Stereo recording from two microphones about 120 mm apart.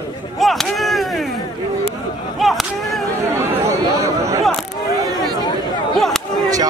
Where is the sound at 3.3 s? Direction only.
20° right (ahead or behind).